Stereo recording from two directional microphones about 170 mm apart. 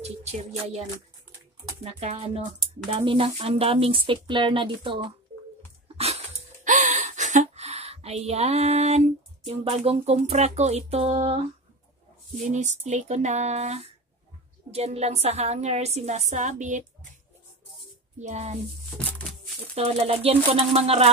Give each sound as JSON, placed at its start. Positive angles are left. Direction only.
{"t": 0.0, "sound": "speech", "side_deg": -40}
{"t": 5.9, "sound": "a sound", "side_deg": -40}
{"t": 9.7, "sound": "speech", "side_deg": -35}
{"t": 12.4, "sound": "speech", "side_deg": -45}
{"t": 18.2, "sound": "speech", "side_deg": -45}
{"t": 18.9, "sound": "a sound", "side_deg": 10}
{"t": 19.7, "sound": "speech", "side_deg": -35}